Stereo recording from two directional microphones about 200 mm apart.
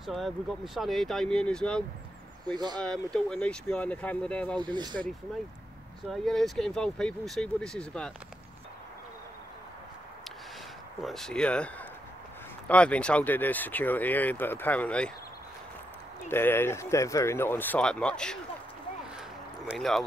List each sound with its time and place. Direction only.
0.0 s speech: centre (ahead or behind)
4.6 s speech: 20° right (ahead or behind)
6.0 s speech: centre (ahead or behind)
11.0 s speech: centre (ahead or behind)
16.3 s speech: 10° left (ahead or behind)
19.6 s speech: centre (ahead or behind)